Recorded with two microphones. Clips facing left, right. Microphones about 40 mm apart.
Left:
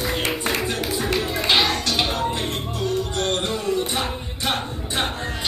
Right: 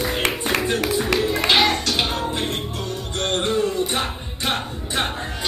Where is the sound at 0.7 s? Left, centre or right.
Right.